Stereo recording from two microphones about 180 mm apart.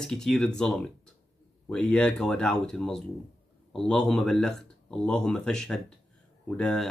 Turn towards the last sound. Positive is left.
turn(degrees=5)  # may be behind; listen again after turning